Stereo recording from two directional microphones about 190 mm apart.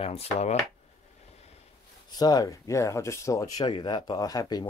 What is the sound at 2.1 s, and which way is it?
Speech, 20° left (ahead or behind).